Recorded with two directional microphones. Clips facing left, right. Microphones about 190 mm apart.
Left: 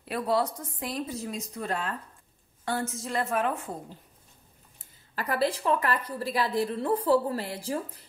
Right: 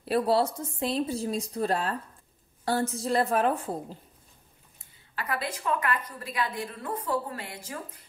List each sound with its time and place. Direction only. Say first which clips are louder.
0.0 s a woman's voice: right 3 dB; 30° right (ahead or behind)
5.1 s a woman's voice: left 5 dB; 35° left (ahead or behind)